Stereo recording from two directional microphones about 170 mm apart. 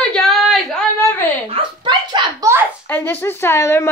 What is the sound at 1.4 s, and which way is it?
Speech, 30° right (ahead or behind).